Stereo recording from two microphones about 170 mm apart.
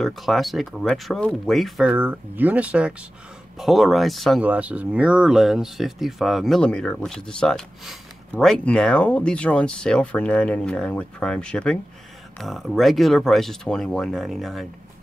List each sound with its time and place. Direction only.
0.0 s speech: centre (ahead or behind)